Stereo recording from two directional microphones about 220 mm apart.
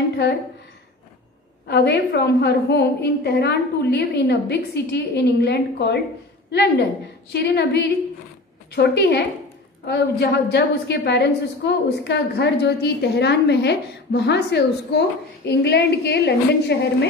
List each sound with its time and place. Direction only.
1.7 s a woman's voice: 50° left (ahead or behind)